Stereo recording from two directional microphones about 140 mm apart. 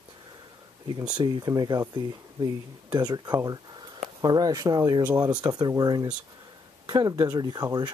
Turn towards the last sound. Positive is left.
turn(degrees=-30)  # may be behind; listen again after turning